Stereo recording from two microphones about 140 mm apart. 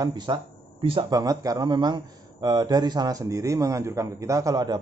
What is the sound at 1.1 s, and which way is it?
Speech, 25° right (ahead or behind).